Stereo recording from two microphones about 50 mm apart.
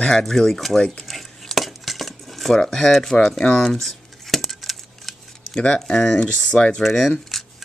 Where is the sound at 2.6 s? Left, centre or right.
Centre.